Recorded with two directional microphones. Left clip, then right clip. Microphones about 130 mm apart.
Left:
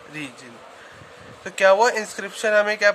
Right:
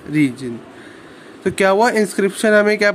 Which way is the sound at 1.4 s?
30° right (ahead or behind).